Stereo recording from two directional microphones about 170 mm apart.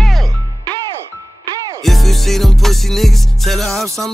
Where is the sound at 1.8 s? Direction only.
Centre (ahead or behind).